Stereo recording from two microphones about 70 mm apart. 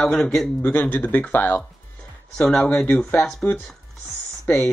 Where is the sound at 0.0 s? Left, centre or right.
Centre.